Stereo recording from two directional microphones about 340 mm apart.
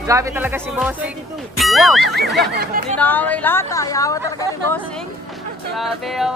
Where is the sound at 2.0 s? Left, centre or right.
Right.